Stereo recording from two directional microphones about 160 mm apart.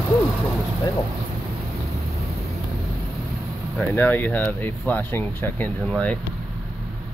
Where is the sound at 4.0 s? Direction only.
10° left (ahead or behind).